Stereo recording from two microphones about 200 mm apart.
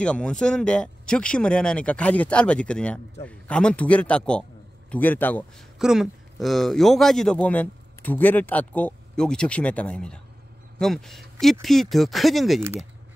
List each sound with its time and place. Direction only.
0.0 s a man's voice: 5° left (ahead or behind)
5.8 s speech: 5° right (ahead or behind)